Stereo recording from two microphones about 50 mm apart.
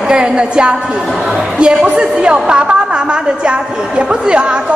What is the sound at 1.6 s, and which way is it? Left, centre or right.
A woman's voice, centre.